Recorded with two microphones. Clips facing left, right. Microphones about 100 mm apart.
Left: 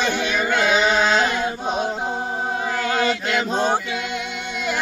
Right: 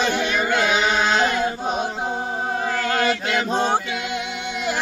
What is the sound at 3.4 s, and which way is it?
Male singing, centre (ahead or behind).